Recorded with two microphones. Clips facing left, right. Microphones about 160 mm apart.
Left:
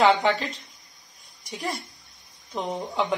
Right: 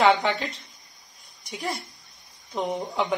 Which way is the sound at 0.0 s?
Centre (ahead or behind).